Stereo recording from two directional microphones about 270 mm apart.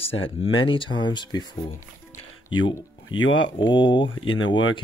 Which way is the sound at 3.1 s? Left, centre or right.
Left.